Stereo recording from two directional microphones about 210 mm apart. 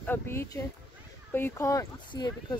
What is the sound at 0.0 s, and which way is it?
Speech, 10° left (ahead or behind).